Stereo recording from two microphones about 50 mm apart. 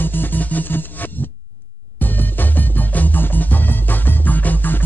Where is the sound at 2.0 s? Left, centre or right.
Left.